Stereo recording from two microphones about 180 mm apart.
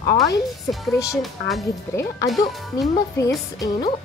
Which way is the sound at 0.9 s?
15° left (ahead or behind).